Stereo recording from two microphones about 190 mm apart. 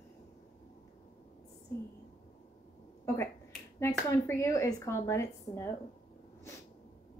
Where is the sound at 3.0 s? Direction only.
15° left (ahead or behind).